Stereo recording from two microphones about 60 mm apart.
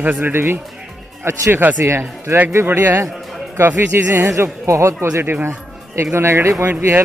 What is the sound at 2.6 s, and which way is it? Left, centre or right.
Speech, right.